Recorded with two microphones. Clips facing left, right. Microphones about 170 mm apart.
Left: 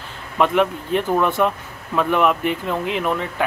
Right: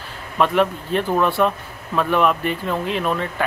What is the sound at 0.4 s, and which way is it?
Speech, 15° left (ahead or behind).